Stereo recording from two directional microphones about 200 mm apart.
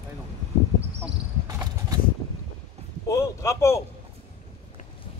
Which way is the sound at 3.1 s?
15° left (ahead or behind).